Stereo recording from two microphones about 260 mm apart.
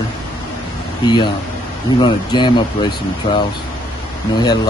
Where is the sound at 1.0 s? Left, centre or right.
Centre.